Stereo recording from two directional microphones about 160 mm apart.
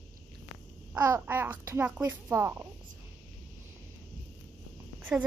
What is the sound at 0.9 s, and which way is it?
Speech, 15° right (ahead or behind).